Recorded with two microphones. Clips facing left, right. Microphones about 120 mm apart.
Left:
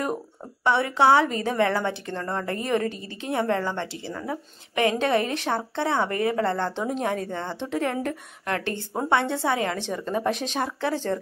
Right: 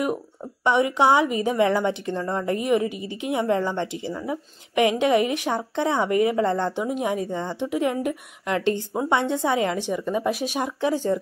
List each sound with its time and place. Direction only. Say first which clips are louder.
0.7 s a woman's voice: right 1 dB; 15° right (ahead or behind)